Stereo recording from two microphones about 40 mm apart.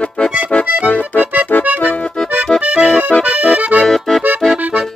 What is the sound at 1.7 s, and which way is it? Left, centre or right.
Accordion, right.